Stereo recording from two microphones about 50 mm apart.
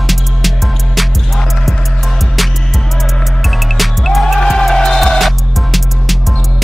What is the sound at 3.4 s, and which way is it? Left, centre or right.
Music, centre.